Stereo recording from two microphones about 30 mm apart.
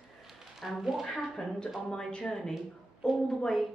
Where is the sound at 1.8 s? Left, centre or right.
Left.